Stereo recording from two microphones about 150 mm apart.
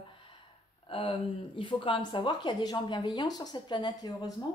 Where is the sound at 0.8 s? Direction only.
35° left (ahead or behind).